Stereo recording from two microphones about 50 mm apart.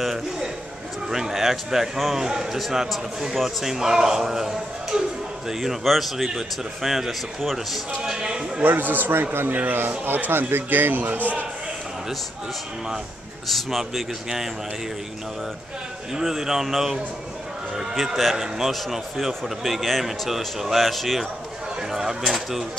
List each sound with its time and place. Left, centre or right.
0.0 s a man's voice: centre
8.0 s speech: centre
8.6 s speech: right
13.5 s a man's voice: centre
16.1 s a man's voice: centre